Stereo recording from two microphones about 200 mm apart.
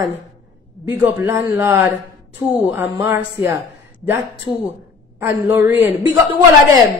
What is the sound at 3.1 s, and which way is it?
Speech, 10° right (ahead or behind).